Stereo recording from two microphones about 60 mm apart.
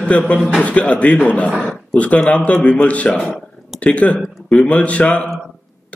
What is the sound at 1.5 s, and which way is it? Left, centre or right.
Speech, centre.